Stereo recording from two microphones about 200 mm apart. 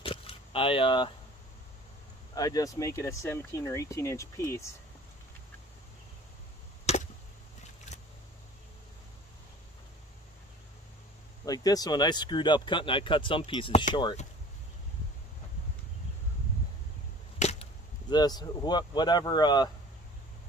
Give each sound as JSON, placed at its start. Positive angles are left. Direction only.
{"t": 0.0, "sound": "a sound", "side_deg": 25}
{"t": 2.3, "sound": "speech", "side_deg": 20}
{"t": 6.9, "sound": "chop", "side_deg": 30}
{"t": 11.4, "sound": "speech", "side_deg": 20}
{"t": 17.4, "sound": "whip", "side_deg": 35}
{"t": 18.1, "sound": "speech", "side_deg": 20}